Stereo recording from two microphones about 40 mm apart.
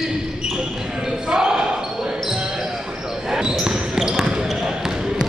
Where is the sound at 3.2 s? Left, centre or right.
Centre.